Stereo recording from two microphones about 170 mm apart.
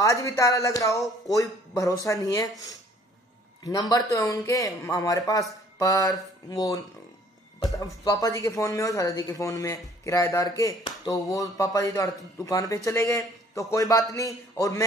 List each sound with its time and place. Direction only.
0.0 s speech: 20° left (ahead or behind)
3.6 s speech: 20° left (ahead or behind)